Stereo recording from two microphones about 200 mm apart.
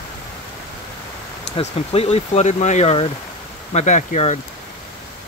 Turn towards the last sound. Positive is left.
turn(degrees=35)  # may be behind; listen again after turning